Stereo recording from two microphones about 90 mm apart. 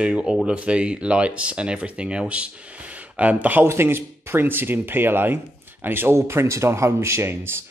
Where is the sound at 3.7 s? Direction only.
30° right (ahead or behind).